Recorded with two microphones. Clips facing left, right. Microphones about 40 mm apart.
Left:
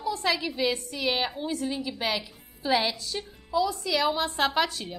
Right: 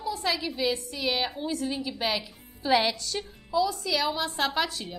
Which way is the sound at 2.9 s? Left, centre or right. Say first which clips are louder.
Right 1 dB; centre.